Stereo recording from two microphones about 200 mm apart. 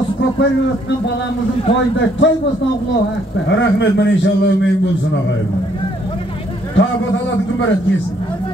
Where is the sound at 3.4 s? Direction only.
60° left (ahead or behind).